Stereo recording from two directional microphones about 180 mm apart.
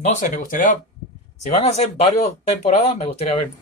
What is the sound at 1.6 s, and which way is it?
Speech, 35° left (ahead or behind).